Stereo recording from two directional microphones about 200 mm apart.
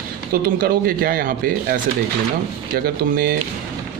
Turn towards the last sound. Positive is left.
turn(degrees=-45)  # may be behind; listen again after turning